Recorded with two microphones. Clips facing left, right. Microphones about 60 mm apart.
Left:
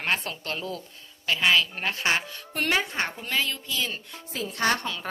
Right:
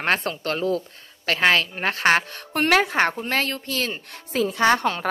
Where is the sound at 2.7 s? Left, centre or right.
Right.